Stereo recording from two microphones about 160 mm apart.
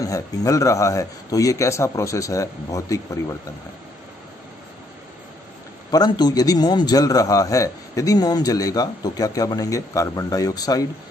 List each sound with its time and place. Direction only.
0.0 s a man's voice: 20° left (ahead or behind)
5.9 s a man's voice: 25° left (ahead or behind)